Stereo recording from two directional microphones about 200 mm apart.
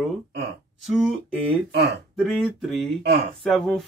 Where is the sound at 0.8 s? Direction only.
Centre (ahead or behind).